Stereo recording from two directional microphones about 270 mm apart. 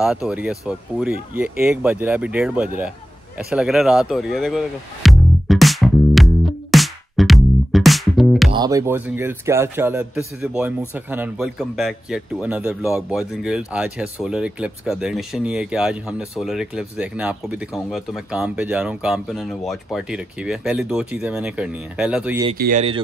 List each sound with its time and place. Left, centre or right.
0.0 s speech: centre
3.3 s music: centre
8.5 s a man's voice: centre
22.6 s speech: right